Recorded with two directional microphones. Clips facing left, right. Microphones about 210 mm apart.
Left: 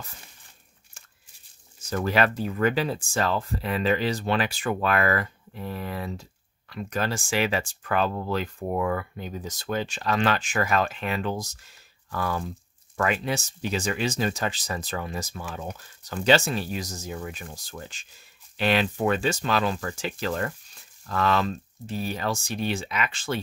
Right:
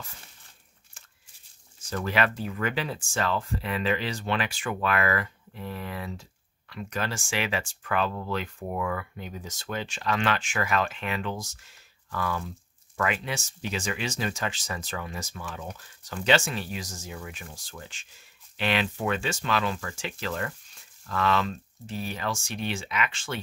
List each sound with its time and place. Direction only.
2.0 s speech: 40° left (ahead or behind)